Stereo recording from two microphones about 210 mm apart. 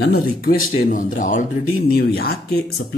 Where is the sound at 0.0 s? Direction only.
45° left (ahead or behind).